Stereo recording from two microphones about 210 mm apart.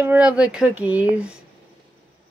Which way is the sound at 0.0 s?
5° right (ahead or behind).